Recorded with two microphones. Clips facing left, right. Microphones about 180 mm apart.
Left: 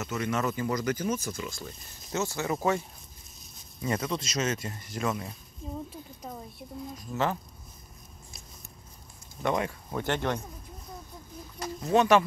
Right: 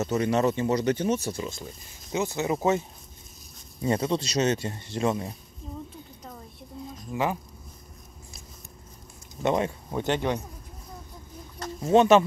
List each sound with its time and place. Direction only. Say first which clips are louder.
0.0 s speech: right 6 dB; 30° right (ahead or behind)
3.8 s speech: right 5 dB; 30° right (ahead or behind)
7.1 s speech: right 2 dB; 10° right (ahead or behind)
9.4 s speech: right 4 dB; 25° right (ahead or behind)
11.8 s speech: right 4 dB; 25° right (ahead or behind)